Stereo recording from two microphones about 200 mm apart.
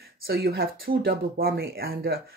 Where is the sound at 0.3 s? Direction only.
50° right (ahead or behind).